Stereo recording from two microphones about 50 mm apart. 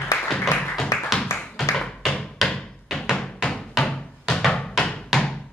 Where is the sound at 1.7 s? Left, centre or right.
Centre.